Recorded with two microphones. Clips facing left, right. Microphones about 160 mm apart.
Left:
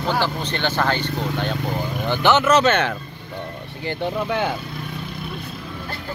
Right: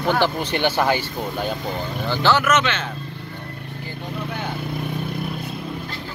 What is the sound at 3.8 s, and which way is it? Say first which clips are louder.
Speech: left 8 dB; 90° left.